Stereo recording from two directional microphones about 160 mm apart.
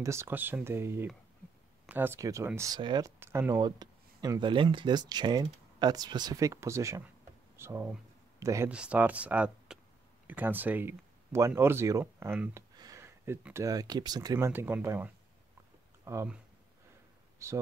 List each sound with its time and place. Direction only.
0.0 s speech: 15° right (ahead or behind)
2.8 s speech: 30° right (ahead or behind)
3.2 s speech: 15° right (ahead or behind)
8.6 s speech: 5° right (ahead or behind)
17.4 s speech: 15° right (ahead or behind)